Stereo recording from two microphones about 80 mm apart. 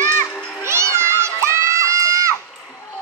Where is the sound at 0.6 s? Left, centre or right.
Right.